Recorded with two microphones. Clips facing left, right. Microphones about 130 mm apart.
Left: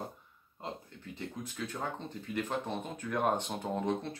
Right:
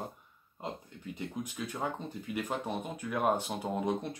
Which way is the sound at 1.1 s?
15° right (ahead or behind).